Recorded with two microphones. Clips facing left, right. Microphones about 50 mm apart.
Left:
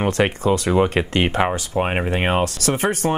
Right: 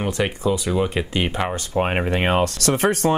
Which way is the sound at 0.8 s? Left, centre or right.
Left.